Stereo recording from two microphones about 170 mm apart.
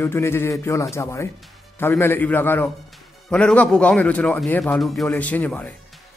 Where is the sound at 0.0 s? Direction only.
15° left (ahead or behind).